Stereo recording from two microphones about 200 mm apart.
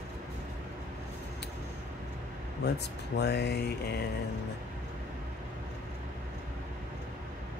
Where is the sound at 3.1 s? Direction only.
55° left (ahead or behind).